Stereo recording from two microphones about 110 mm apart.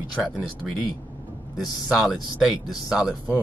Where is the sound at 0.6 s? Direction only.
Centre (ahead or behind).